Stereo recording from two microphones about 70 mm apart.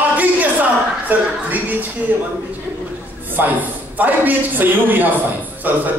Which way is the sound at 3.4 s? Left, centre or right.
Right.